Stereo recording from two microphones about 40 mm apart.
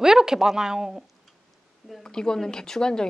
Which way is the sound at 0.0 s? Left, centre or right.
Centre.